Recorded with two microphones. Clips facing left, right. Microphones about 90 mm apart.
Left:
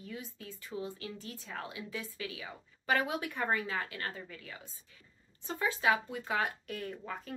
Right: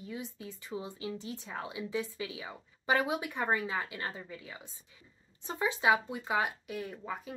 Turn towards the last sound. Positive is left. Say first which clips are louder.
# right 1 dB
turn(degrees=-10)  # may be behind; listen again after turning